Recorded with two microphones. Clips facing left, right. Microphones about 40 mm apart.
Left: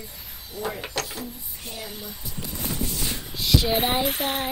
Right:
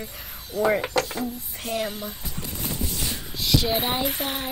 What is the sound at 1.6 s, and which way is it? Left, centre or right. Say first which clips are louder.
Speech: right 10 dB; right.